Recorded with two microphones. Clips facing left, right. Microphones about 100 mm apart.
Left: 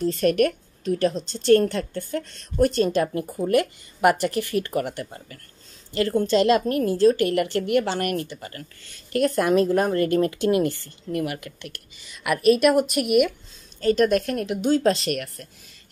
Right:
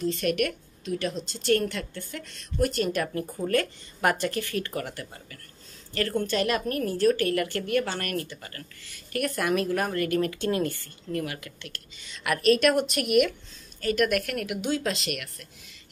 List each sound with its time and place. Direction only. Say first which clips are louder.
0.0 s a woman's voice: left 6 dB; 40° left (ahead or behind); by 13.3 s 5° left (ahead or behind)
13.7 s a woman's voice: left 5 dB; 30° left (ahead or behind)